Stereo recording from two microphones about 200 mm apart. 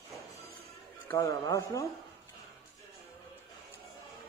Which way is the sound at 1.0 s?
15° left (ahead or behind).